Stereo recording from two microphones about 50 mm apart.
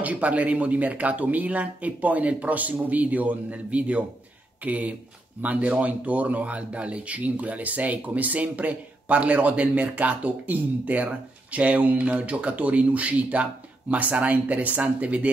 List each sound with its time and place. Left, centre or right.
0.0 s speech: right